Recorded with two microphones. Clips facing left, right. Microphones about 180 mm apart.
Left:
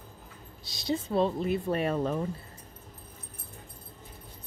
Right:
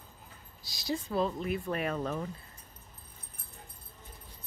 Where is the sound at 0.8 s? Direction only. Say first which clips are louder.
Left 4 dB; 25° left (ahead or behind).